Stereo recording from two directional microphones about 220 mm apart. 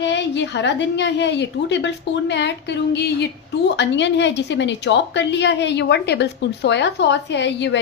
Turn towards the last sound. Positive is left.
turn(degrees=50)  # may be behind; listen again after turning